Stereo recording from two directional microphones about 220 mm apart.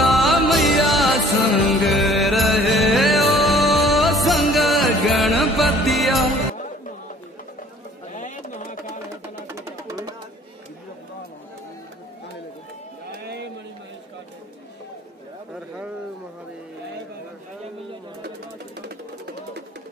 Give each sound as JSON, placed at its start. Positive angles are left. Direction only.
{"t": 0.0, "sound": "music", "side_deg": 0}
{"t": 8.1, "sound": "pigeon", "side_deg": 35}
{"t": 9.3, "sound": "music", "side_deg": -10}
{"t": 13.2, "sound": "a sound", "side_deg": -50}
{"t": 18.8, "sound": "music", "side_deg": -45}